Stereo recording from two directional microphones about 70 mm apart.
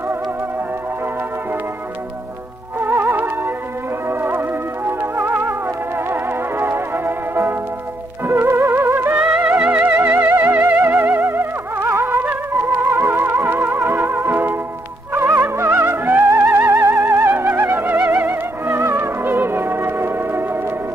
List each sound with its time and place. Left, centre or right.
2.8 s music: right
9.2 s music: centre; by 20.4 s right